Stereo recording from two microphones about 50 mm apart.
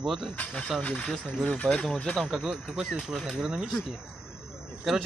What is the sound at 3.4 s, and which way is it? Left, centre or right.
Speech, centre.